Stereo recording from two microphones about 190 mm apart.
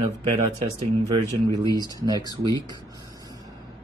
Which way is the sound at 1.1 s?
20° right (ahead or behind).